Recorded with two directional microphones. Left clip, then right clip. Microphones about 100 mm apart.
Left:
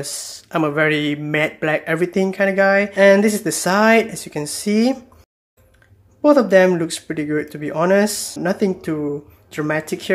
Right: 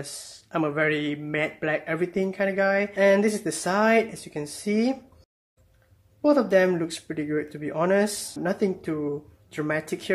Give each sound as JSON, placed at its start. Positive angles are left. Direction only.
{"t": 0.0, "sound": "speech", "side_deg": 15}
{"t": 6.2, "sound": "speech", "side_deg": 20}